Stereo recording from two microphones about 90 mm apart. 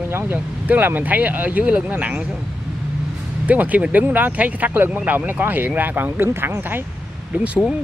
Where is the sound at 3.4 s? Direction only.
15° right (ahead or behind).